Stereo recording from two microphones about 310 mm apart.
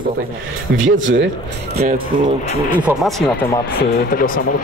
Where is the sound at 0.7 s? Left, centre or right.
Right.